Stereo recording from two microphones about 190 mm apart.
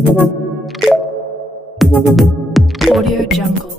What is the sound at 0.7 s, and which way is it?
Music, centre (ahead or behind).